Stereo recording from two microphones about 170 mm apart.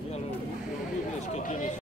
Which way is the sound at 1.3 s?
45° left (ahead or behind).